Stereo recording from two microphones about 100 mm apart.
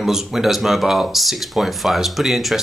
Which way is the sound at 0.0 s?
5° right (ahead or behind).